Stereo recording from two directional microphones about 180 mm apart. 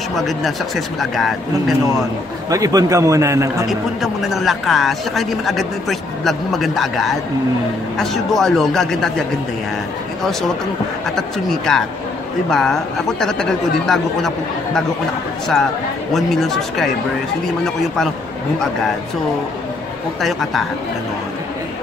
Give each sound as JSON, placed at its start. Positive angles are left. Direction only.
{"t": 0.1, "sound": "speech", "side_deg": 0}
{"t": 2.5, "sound": "a man's voice", "side_deg": -20}
{"t": 3.6, "sound": "speech", "side_deg": 0}
{"t": 11.1, "sound": "speech", "side_deg": 0}
{"t": 16.1, "sound": "speech", "side_deg": 0}
{"t": 20.2, "sound": "speech", "side_deg": 0}